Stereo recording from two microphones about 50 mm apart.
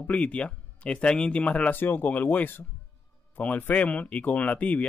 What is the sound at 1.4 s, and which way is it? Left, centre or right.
Speech, left.